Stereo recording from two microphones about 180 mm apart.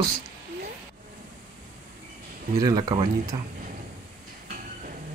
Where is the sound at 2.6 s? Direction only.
20° right (ahead or behind).